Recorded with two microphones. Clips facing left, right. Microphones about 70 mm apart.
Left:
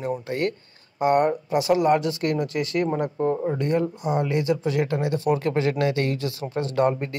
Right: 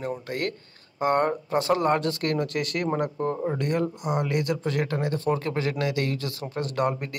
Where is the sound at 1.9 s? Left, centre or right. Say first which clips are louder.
Left 2 dB; centre.